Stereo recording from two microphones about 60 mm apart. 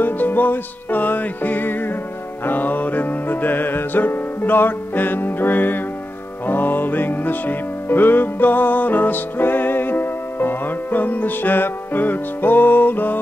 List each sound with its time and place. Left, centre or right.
0.0 s music: left